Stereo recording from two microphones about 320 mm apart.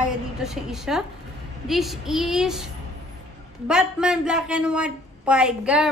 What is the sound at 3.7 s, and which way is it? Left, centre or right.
A woman's voice, centre.